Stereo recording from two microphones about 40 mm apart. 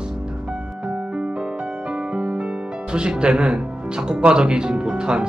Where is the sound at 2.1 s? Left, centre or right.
Right.